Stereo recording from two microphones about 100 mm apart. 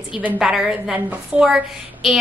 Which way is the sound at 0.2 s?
15° right (ahead or behind).